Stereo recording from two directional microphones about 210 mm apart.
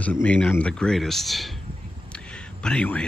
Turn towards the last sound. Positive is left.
turn(degrees=5)  # may be behind; listen again after turning